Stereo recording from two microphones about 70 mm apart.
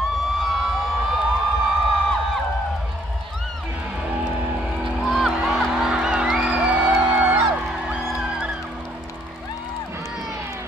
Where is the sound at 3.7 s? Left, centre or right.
Centre.